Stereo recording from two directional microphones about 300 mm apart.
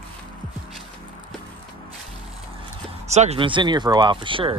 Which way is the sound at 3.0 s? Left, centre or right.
Right.